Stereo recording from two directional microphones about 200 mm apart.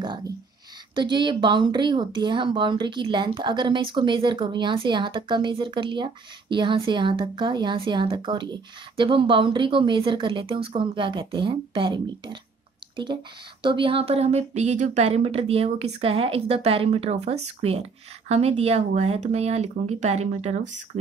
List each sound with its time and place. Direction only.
0.9 s speech: 25° right (ahead or behind)